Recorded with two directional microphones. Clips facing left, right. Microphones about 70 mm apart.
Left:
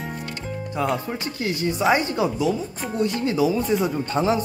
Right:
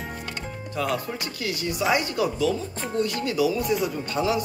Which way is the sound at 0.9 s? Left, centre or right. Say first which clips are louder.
Left 2 dB; left.